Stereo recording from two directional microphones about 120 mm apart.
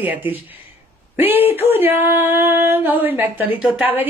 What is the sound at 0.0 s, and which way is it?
Speech, 15° right (ahead or behind).